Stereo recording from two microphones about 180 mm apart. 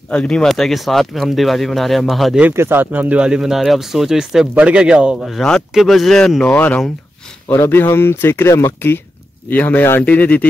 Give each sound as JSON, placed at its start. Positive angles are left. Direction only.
{"t": 0.1, "sound": "speech", "side_deg": 5}